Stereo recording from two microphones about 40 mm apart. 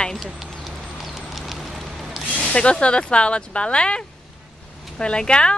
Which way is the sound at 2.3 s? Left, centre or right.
Left.